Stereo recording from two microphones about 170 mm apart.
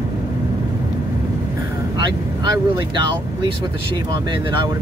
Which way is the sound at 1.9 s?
25° right (ahead or behind).